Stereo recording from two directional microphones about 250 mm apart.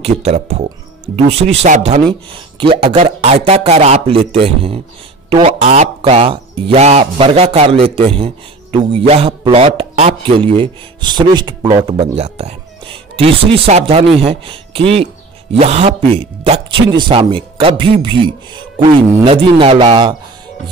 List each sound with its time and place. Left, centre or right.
0.0 s a man's voice: right